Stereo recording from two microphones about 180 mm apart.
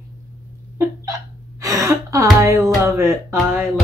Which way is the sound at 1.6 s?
20° right (ahead or behind).